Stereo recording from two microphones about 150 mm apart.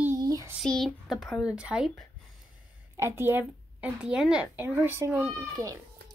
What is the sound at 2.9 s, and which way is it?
Speech, 15° right (ahead or behind).